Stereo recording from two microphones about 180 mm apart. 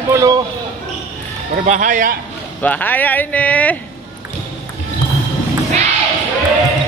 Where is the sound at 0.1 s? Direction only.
20° right (ahead or behind).